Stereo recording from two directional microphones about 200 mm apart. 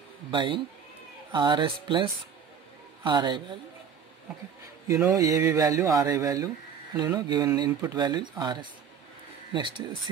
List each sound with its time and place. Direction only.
0.3 s speech: 25° right (ahead or behind)
5.1 s speech: 15° right (ahead or behind)